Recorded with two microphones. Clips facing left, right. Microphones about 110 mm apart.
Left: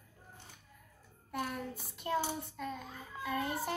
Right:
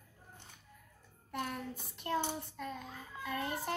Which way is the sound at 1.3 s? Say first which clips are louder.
Left 1 dB; 5° left (ahead or behind).